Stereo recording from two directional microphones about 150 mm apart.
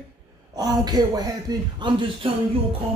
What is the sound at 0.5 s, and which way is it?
A man's voice, 25° right (ahead or behind).